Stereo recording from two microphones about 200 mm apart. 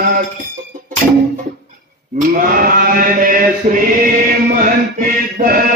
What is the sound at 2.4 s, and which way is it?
Chant, 45° right (ahead or behind).